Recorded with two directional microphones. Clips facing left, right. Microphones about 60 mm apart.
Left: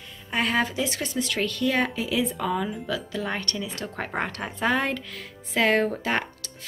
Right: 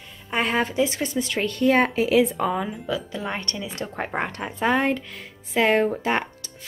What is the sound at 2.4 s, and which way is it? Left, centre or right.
Speech, right.